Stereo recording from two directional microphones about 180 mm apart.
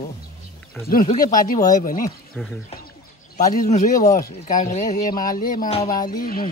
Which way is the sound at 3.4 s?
50° left (ahead or behind).